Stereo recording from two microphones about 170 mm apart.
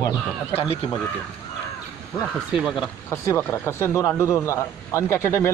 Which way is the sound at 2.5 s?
5° right (ahead or behind).